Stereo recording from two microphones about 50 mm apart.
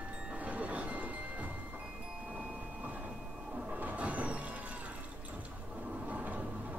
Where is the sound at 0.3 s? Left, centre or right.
Right.